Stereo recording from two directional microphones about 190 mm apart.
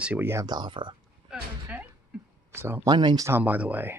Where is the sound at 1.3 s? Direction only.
5° right (ahead or behind).